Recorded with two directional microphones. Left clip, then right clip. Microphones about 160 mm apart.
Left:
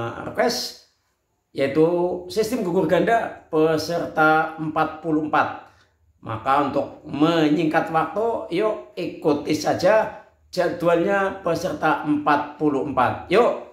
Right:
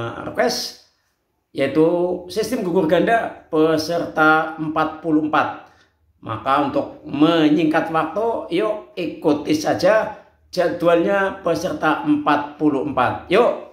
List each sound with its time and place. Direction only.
0.0 s a man's voice: 10° right (ahead or behind)
1.8 s a man's voice: 10° right (ahead or behind)